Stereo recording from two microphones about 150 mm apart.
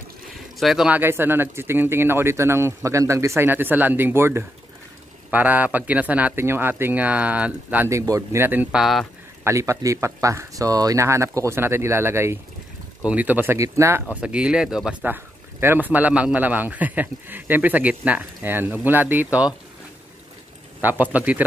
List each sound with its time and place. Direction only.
0.3 s speech: centre (ahead or behind); by 14.0 s 20° right (ahead or behind)
14.2 s speech: 5° right (ahead or behind)
20.8 s speech: 10° right (ahead or behind)